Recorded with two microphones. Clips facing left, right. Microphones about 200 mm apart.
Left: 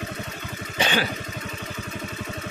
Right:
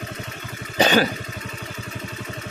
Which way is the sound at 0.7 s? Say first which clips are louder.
Right 7 dB; 40° right (ahead or behind).